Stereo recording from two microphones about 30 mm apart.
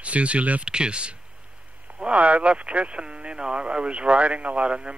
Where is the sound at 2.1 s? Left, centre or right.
Right.